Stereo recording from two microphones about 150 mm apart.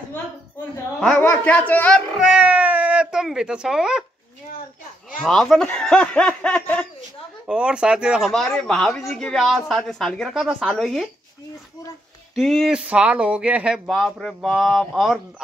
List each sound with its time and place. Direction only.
0.9 s speech: 5° left (ahead or behind)
2.1 s cat: 5° right (ahead or behind)
5.2 s speech: centre (ahead or behind)
7.4 s speech: 5° right (ahead or behind)
12.4 s speech: centre (ahead or behind)